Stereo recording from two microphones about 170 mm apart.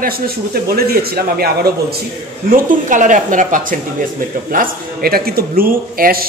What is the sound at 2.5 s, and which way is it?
A woman's voice, 50° right (ahead or behind).